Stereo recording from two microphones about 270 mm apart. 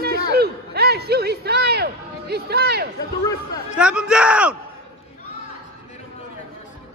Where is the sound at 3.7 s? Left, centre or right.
Centre.